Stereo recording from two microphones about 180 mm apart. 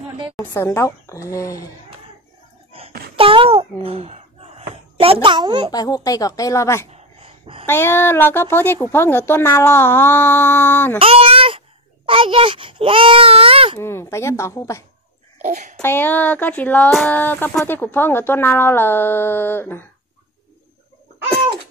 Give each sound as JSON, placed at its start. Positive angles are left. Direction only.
{"t": 0.4, "sound": "speech", "side_deg": 15}
{"t": 3.2, "sound": "a child's voice", "side_deg": -30}
{"t": 5.7, "sound": "speech", "side_deg": 20}
{"t": 6.9, "sound": "a sound", "side_deg": -30}
{"t": 7.6, "sound": "speech", "side_deg": 15}
{"t": 11.0, "sound": "speech", "side_deg": -30}
{"t": 13.7, "sound": "speech", "side_deg": 15}
{"t": 15.4, "sound": "speech", "side_deg": -40}
{"t": 15.8, "sound": "speech", "side_deg": 10}